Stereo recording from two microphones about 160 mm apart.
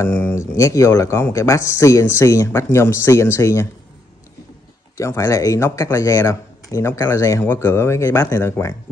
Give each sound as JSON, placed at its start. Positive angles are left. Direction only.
{"t": 0.0, "sound": "speech", "side_deg": 15}
{"t": 4.9, "sound": "speech", "side_deg": 20}